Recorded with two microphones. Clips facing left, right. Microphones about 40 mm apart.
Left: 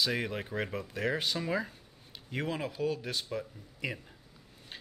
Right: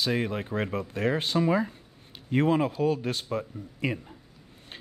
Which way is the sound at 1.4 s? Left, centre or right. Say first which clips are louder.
Right 8 dB; centre.